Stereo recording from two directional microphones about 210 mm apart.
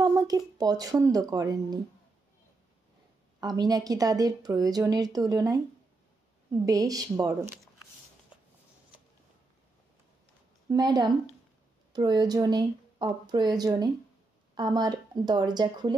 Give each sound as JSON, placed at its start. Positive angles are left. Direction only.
{"t": 0.0, "sound": "speech", "side_deg": -15}
{"t": 3.3, "sound": "a woman's voice", "side_deg": -20}
{"t": 10.7, "sound": "speech", "side_deg": -20}